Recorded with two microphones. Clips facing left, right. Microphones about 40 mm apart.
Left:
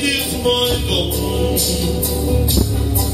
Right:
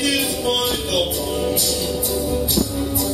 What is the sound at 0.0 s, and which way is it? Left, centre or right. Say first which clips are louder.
Music: left 2 dB; left.